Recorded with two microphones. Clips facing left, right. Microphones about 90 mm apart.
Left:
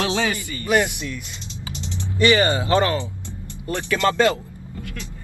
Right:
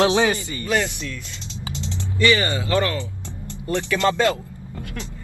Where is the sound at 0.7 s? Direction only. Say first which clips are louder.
Left 3 dB; 20° left (ahead or behind).